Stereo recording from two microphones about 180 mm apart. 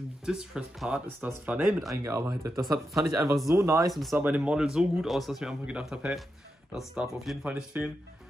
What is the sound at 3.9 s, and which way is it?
Speech, centre (ahead or behind).